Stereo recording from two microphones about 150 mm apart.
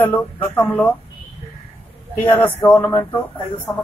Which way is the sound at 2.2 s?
15° left (ahead or behind).